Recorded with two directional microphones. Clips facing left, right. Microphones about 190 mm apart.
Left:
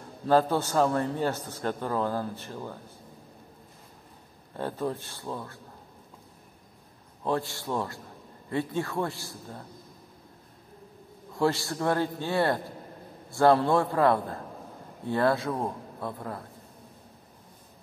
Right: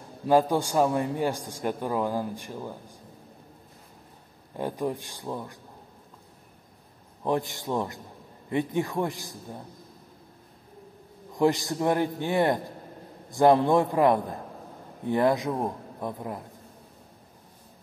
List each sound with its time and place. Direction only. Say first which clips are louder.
0.3 s a man's voice: right 1 dB; 15° right (ahead or behind)
4.6 s a man's voice: right 2 dB; 15° right (ahead or behind)
7.2 s a man's voice: right 2 dB; 15° right (ahead or behind)
11.3 s a man's voice: right 3 dB; 15° right (ahead or behind)